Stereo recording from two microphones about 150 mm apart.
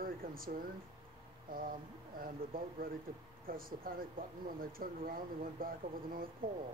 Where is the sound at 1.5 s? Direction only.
70° right (ahead or behind).